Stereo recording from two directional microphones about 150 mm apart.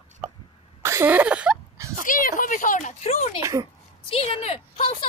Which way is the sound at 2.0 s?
65° left (ahead or behind).